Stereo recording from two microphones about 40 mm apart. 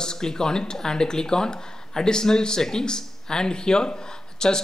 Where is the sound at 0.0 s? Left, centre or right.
Centre.